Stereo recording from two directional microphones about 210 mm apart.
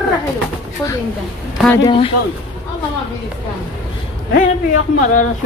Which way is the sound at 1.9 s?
25° left (ahead or behind).